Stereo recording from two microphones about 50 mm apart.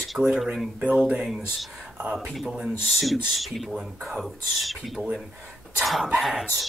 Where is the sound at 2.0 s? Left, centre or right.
Right.